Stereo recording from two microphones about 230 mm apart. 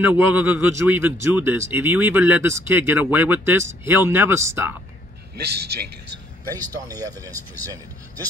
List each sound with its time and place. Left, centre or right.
0.0 s speech: centre
5.4 s a man's voice: right